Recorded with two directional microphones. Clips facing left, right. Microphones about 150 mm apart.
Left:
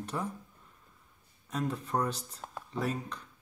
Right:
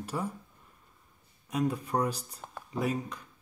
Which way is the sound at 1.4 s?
10° right (ahead or behind).